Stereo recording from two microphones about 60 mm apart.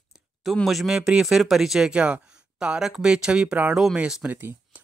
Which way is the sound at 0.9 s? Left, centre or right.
Centre.